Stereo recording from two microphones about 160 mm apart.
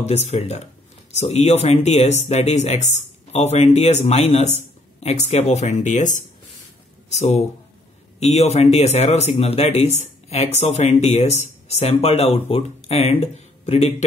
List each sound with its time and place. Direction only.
0.0 s speech: 45° left (ahead or behind)